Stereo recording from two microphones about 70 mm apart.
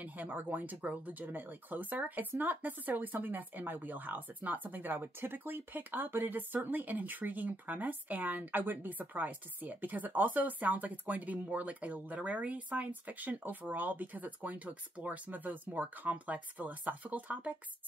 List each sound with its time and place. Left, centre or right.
0.0 s speech: right